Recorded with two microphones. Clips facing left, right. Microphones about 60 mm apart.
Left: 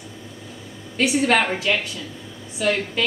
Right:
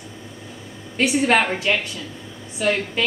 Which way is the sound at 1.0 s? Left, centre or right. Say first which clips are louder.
Right 1 dB; right.